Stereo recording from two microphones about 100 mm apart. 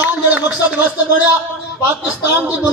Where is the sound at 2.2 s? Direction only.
15° right (ahead or behind).